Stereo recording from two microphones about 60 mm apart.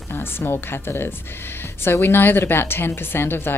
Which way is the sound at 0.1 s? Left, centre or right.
Left.